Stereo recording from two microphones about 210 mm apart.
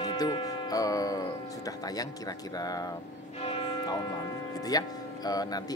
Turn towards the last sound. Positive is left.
turn(degrees=20)  # may be behind; listen again after turning